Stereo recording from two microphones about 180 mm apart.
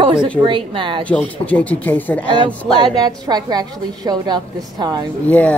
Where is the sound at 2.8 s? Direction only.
20° right (ahead or behind).